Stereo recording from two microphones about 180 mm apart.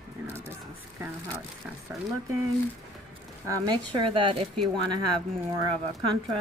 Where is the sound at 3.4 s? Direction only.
20° right (ahead or behind).